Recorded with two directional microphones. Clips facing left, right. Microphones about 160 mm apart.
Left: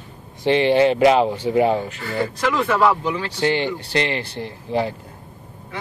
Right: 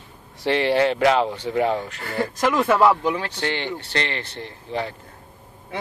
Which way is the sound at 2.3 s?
45° right (ahead or behind).